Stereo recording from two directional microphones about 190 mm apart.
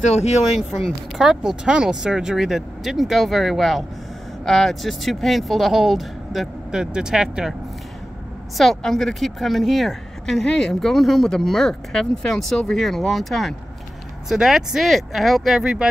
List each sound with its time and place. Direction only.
0.0 s speech: 35° left (ahead or behind)
0.6 s speech: centre (ahead or behind)
8.5 s speech: centre (ahead or behind)